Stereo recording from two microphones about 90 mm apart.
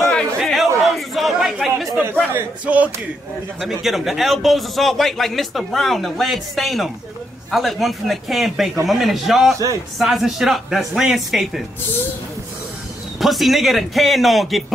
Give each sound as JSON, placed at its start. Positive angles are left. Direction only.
{"t": 0.0, "sound": "chatter", "side_deg": 0}
{"t": 2.6, "sound": "speech", "side_deg": -15}
{"t": 3.6, "sound": "a man's voice", "side_deg": 0}
{"t": 13.2, "sound": "a man's voice", "side_deg": 0}